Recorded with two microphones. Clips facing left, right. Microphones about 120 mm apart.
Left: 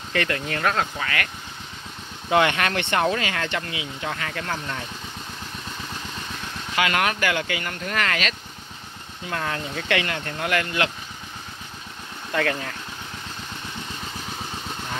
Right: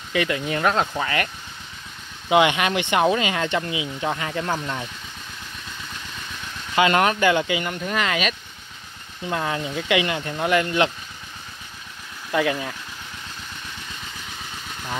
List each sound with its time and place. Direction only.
0.1 s speech: 15° right (ahead or behind)
6.7 s speech: 25° right (ahead or behind)
12.3 s speech: 15° right (ahead or behind)